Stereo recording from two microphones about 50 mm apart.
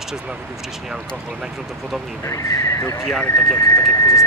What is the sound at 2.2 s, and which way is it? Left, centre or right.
Speech, left.